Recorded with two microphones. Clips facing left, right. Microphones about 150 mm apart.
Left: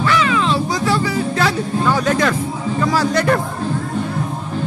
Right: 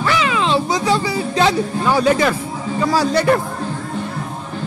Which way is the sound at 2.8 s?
10° right (ahead or behind).